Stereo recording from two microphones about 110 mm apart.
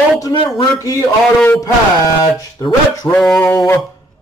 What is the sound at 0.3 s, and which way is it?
Speech, 50° left (ahead or behind).